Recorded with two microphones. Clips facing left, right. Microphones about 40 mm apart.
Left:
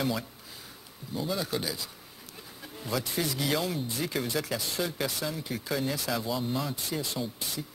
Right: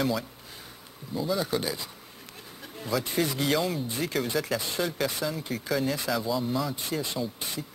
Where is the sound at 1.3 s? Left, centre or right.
Centre.